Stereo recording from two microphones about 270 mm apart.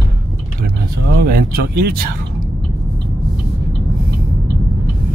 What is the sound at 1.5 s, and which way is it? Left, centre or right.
Speech, right.